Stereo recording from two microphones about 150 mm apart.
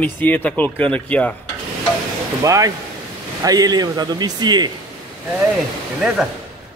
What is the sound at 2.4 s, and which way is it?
A man's voice, 25° right (ahead or behind).